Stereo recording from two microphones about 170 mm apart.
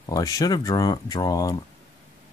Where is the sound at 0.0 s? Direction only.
20° left (ahead or behind).